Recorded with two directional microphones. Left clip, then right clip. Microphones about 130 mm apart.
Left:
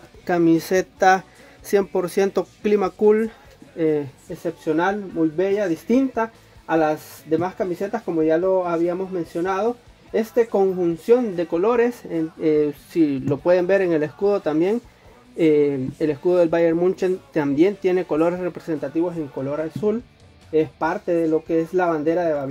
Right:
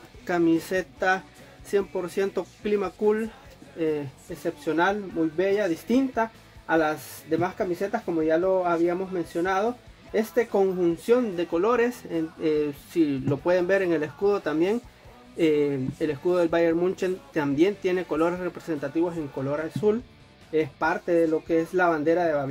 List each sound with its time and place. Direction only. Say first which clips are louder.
0.3 s speech: left 5 dB; 50° left (ahead or behind); by 2.4 s 90° left
2.6 s speech: left 7 dB; 75° left (ahead or behind)
4.4 s speech: left 3 dB; 30° left (ahead or behind)
18.9 s speech: left 2 dB; 25° left (ahead or behind)